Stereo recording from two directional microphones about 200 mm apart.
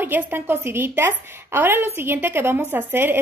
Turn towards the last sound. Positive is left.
turn(degrees=-10)  # may be behind; listen again after turning